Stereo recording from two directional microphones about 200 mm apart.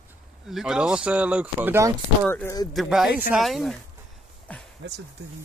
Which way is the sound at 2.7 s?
Centre (ahead or behind).